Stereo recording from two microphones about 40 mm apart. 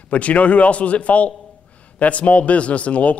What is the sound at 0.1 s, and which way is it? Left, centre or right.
Speech, left.